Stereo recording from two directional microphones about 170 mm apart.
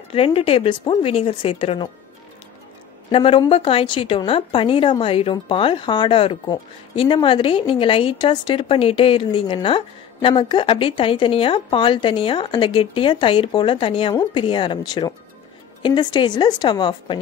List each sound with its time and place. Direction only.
0.1 s speech: 35° left (ahead or behind)
3.1 s a woman's voice: 30° left (ahead or behind)